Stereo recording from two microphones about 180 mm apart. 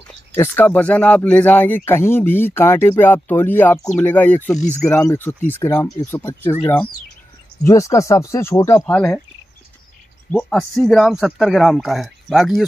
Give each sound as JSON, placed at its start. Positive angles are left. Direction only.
{"t": 0.1, "sound": "speech", "side_deg": 10}
{"t": 8.9, "sound": "speech", "side_deg": 5}
{"t": 10.3, "sound": "speech", "side_deg": 5}